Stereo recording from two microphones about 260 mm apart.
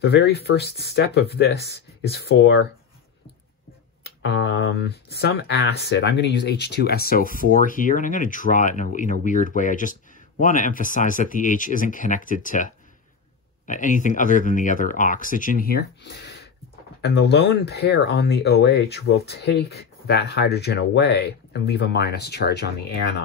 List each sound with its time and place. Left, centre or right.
0.0 s speech: left
4.0 s speech: left